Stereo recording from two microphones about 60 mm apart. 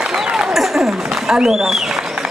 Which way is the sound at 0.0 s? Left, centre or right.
Centre.